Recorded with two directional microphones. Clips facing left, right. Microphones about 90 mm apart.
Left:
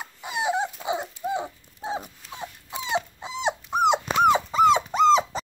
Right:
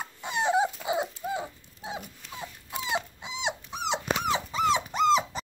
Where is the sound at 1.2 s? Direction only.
20° left (ahead or behind); by 4.9 s 50° left (ahead or behind).